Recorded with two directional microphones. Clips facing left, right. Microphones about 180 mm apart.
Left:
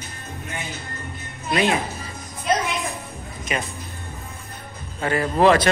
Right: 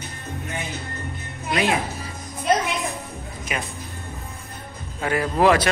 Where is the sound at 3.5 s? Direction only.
5° right (ahead or behind).